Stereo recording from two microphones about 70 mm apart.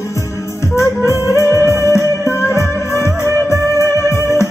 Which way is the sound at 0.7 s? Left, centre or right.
Left.